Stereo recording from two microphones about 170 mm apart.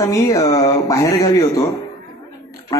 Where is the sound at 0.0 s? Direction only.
20° left (ahead or behind).